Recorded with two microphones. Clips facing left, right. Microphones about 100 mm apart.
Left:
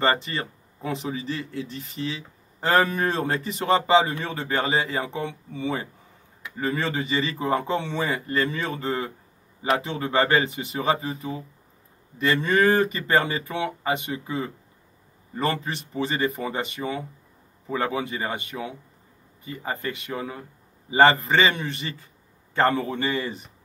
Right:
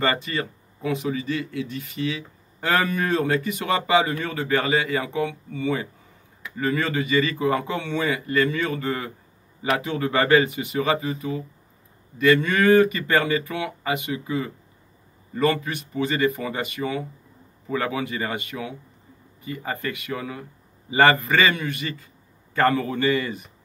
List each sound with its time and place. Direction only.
0.0 s speech: 30° left (ahead or behind)